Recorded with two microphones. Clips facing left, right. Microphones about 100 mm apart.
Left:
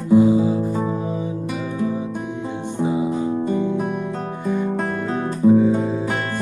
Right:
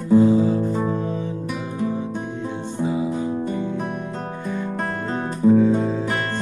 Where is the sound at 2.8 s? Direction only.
20° left (ahead or behind).